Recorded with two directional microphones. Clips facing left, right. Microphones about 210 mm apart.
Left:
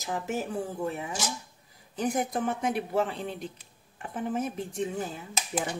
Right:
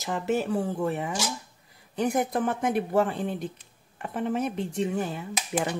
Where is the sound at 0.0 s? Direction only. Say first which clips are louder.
Right 5 dB; 75° right (ahead or behind).